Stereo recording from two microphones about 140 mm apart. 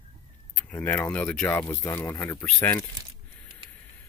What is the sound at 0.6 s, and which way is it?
Speech, 10° left (ahead or behind).